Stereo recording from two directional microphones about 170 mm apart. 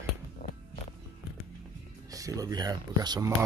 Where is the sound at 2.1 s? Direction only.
20° right (ahead or behind).